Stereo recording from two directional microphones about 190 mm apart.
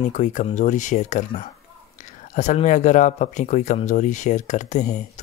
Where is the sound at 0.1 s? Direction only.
40° left (ahead or behind).